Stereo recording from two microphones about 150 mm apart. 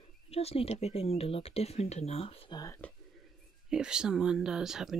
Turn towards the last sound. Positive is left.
turn(degrees=-5)  # may be behind; listen again after turning